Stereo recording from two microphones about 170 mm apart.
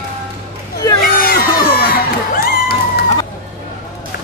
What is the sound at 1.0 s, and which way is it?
Crowd, 60° left (ahead or behind).